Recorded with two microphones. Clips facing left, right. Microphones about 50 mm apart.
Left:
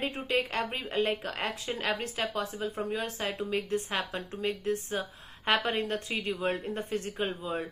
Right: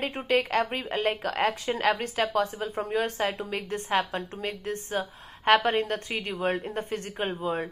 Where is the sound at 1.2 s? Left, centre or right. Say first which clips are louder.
Right 7 dB; right.